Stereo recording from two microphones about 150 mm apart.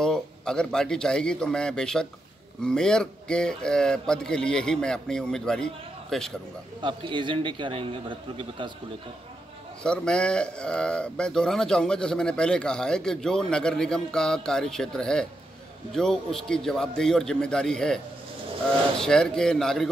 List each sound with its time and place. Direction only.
0.0 s a man's voice: 5° left (ahead or behind)
6.8 s a man's voice: 35° right (ahead or behind)
9.8 s a man's voice: 5° left (ahead or behind)